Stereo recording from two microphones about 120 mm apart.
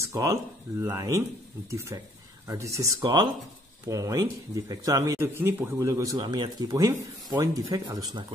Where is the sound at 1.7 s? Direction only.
25° right (ahead or behind).